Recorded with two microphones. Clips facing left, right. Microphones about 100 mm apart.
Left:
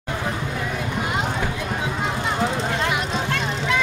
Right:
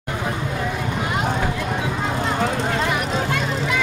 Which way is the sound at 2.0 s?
10° left (ahead or behind).